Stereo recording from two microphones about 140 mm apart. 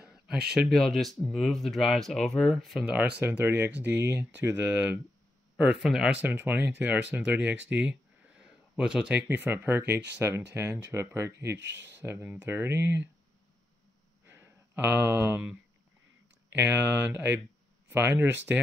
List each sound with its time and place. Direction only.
0.0 s speech: 5° right (ahead or behind)
6.2 s speech: 15° right (ahead or behind)
14.2 s a sound: 15° right (ahead or behind)
16.5 s speech: 10° right (ahead or behind)